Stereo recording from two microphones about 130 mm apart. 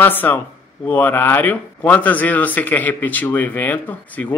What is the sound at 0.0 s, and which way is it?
Speech, 15° left (ahead or behind).